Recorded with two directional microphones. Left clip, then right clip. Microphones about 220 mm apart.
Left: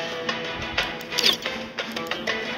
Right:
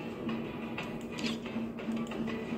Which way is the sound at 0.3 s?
50° left (ahead or behind).